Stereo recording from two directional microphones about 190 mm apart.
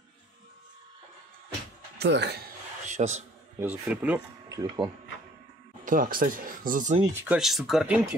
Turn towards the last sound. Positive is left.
turn(degrees=0)  # may be behind; listen again after turning